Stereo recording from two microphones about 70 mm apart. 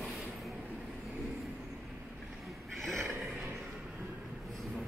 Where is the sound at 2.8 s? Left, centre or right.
Centre.